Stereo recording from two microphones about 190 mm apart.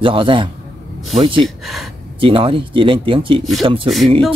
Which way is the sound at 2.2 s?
30° right (ahead or behind).